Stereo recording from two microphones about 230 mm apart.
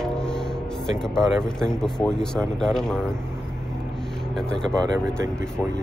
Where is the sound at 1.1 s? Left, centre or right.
Centre.